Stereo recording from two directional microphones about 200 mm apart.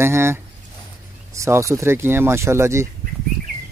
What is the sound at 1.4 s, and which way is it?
Speech, 15° right (ahead or behind).